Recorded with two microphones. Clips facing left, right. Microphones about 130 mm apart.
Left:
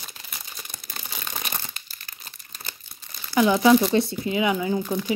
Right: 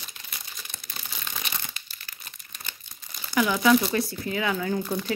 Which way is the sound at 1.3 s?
40° left (ahead or behind).